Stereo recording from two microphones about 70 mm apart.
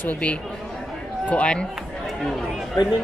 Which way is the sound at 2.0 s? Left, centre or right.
Centre.